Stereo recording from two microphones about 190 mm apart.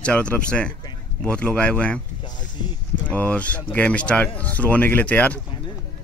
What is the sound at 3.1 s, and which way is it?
Speech, 5° left (ahead or behind).